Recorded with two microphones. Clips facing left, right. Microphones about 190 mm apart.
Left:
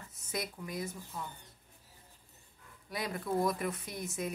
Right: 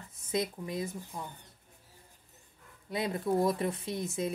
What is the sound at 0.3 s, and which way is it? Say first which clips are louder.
Speech: right 6 dB; 25° right (ahead or behind).